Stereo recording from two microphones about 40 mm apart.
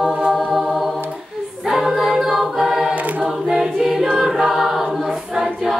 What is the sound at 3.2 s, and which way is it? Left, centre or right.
Choir, centre.